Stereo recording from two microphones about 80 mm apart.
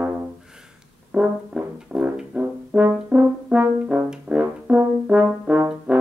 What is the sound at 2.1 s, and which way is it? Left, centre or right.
Brass instrument, centre.